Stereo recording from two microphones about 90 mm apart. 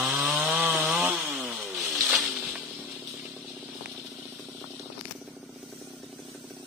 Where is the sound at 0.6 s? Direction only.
15° right (ahead or behind).